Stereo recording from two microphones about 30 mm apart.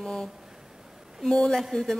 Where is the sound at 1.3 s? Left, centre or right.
Centre.